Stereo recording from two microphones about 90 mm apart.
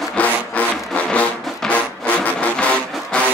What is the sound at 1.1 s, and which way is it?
Music, 15° left (ahead or behind).